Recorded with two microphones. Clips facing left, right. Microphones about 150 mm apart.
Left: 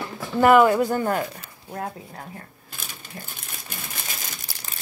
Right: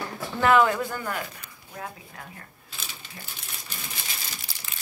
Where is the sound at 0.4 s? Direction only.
10° left (ahead or behind).